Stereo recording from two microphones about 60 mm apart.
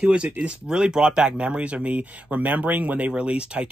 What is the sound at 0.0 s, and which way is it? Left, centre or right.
Speech, centre.